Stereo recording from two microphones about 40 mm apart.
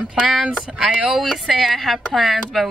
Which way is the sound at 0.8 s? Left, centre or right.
Centre.